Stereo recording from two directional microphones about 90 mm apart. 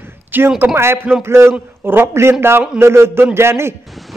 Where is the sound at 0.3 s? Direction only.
20° right (ahead or behind).